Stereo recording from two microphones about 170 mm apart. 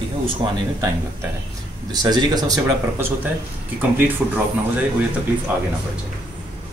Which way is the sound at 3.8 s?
10° right (ahead or behind).